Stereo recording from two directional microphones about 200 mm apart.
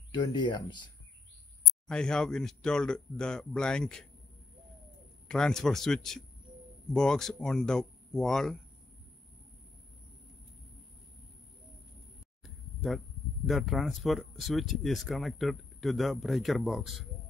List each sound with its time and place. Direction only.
0.1 s speech: 20° left (ahead or behind)
1.9 s speech: 5° left (ahead or behind)
5.3 s speech: 5° left (ahead or behind)
12.4 s a sound: centre (ahead or behind)
13.5 s speech: centre (ahead or behind)